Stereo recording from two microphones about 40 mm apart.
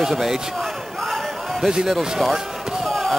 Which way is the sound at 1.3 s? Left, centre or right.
Centre.